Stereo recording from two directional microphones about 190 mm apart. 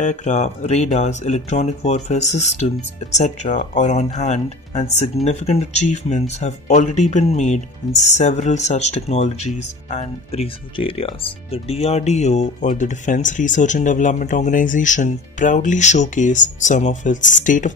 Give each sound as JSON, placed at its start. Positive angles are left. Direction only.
{"t": 0.0, "sound": "speech", "side_deg": 40}